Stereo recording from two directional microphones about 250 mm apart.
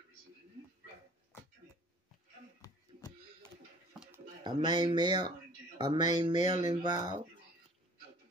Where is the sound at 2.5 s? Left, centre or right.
Centre.